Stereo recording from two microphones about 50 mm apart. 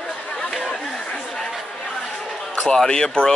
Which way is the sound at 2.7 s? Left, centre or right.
Centre.